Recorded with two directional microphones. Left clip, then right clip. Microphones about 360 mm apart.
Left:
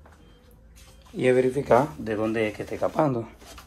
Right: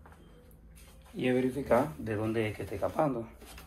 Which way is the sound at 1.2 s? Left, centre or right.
Centre.